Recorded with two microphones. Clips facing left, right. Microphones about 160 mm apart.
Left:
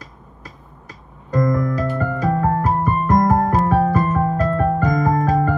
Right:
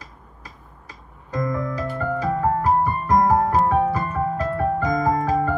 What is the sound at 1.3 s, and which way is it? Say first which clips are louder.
Music: left 6 dB; 50° left (ahead or behind).